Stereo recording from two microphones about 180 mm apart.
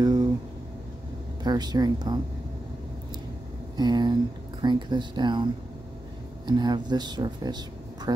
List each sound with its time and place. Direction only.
0.0 s a sound: 25° right (ahead or behind)
1.4 s speech: 25° right (ahead or behind)
3.7 s speech: 25° right (ahead or behind)